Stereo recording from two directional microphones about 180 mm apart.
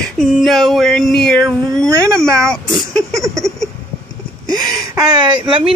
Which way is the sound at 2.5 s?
Centre (ahead or behind).